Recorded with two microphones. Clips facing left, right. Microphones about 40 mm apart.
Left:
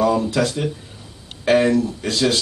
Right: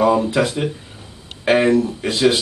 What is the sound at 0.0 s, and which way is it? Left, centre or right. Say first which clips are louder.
Speech: right 2 dB; right.